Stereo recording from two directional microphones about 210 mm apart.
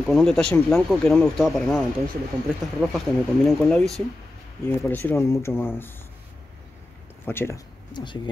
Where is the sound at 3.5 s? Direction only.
Centre (ahead or behind).